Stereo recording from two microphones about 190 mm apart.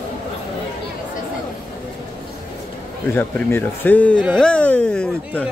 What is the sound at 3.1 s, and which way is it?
Speech, 10° left (ahead or behind).